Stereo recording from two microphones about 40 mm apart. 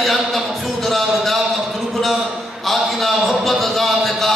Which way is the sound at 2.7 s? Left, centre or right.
Centre.